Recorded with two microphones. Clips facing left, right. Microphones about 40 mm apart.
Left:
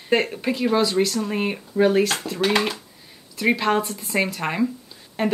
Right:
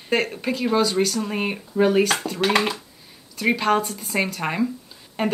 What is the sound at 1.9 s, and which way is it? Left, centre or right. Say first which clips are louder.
Speech: right 1 dB; centre.